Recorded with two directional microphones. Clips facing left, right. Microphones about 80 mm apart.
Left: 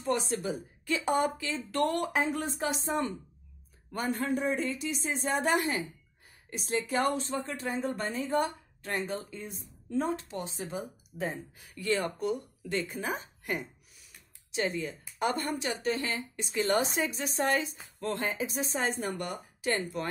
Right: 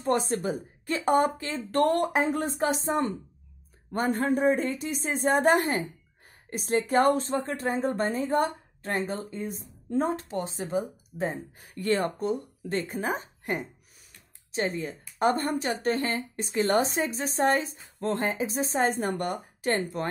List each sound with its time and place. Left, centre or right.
0.0 s a woman's voice: right
3.9 s a woman's voice: right
8.4 s a woman's voice: right
8.9 s a woman's voice: right
11.3 s a woman's voice: right